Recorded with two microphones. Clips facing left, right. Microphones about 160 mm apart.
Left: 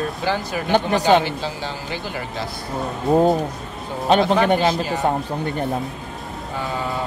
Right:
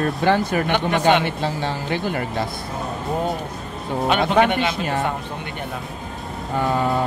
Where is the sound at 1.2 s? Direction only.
60° right (ahead or behind).